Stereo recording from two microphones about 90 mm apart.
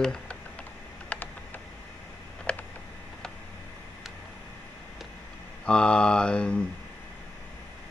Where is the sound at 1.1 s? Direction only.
15° left (ahead or behind).